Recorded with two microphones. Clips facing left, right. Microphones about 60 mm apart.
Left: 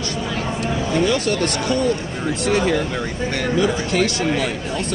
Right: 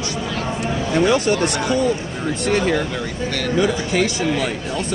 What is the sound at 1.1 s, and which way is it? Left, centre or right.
Speech, centre.